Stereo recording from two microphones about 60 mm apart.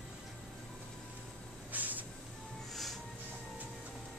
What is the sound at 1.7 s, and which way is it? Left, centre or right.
Vehicle, right.